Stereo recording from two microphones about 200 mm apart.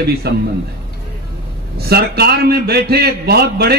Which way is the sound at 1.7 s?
50° right (ahead or behind).